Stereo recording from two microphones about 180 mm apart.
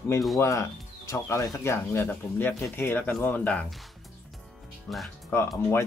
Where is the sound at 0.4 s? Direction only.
15° left (ahead or behind).